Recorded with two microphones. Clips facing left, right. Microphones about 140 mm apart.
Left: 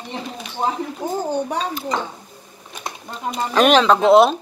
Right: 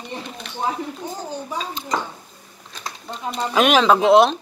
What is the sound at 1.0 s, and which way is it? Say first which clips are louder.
Speech: left 7 dB; 90° left.